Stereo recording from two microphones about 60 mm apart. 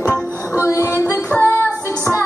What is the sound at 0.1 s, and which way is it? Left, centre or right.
Music, left.